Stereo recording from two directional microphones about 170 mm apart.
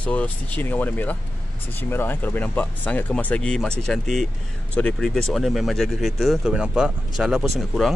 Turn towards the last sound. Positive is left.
turn(degrees=0)  # may be behind; listen again after turning